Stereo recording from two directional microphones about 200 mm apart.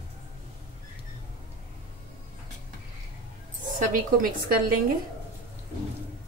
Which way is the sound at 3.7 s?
45° right (ahead or behind).